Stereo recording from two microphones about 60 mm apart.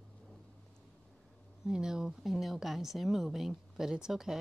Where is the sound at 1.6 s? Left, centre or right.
Centre.